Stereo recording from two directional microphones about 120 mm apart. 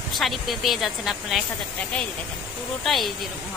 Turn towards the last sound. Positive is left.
turn(degrees=0)  # may be behind; listen again after turning